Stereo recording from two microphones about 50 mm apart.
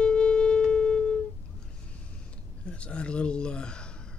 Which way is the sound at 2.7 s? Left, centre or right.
Left.